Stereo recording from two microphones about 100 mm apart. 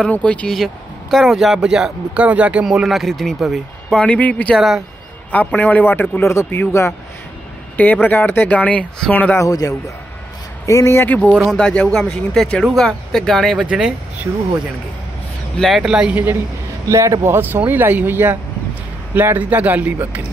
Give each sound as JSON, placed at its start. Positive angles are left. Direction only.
{"t": 0.0, "sound": "speech", "side_deg": 15}
{"t": 1.1, "sound": "speech", "side_deg": 0}
{"t": 3.9, "sound": "speech", "side_deg": 10}
{"t": 4.6, "sound": "speech", "side_deg": 0}
{"t": 5.3, "sound": "a man's voice", "side_deg": 15}
{"t": 7.7, "sound": "speech", "side_deg": 15}
{"t": 9.4, "sound": "speech", "side_deg": 35}
{"t": 11.3, "sound": "speech", "side_deg": 5}
{"t": 13.6, "sound": "a man's voice", "side_deg": -10}
{"t": 15.5, "sound": "a man's voice", "side_deg": 0}
{"t": 16.8, "sound": "a man's voice", "side_deg": -30}